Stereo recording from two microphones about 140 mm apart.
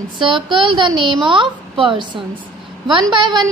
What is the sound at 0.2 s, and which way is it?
A woman's voice, 35° right (ahead or behind).